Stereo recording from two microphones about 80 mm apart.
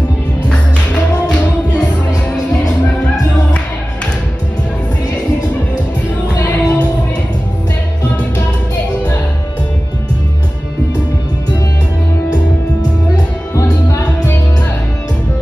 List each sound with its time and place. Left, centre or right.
6.4 s music: centre